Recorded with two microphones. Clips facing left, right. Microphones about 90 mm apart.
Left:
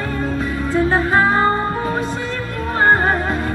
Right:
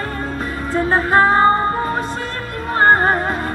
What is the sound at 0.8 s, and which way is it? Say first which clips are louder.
Music: right 3 dB; 40° right (ahead or behind).